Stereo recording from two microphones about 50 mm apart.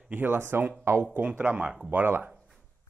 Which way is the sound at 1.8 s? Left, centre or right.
Right.